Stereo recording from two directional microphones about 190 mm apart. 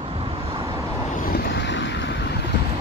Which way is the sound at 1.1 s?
50° left (ahead or behind).